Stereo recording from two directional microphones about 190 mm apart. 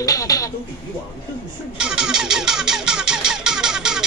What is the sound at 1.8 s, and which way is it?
Music, 5° right (ahead or behind).